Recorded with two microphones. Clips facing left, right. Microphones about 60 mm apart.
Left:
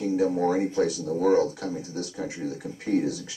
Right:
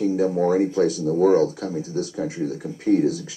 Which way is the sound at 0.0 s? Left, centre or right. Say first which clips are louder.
Right 3 dB; centre.